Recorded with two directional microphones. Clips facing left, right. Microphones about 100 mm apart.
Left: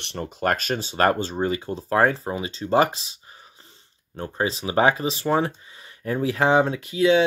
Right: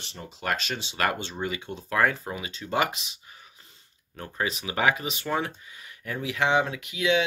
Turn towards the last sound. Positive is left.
turn(degrees=35)  # may be behind; listen again after turning